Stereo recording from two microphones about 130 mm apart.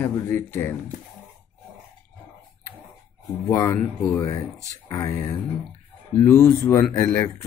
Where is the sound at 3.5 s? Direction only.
20° left (ahead or behind).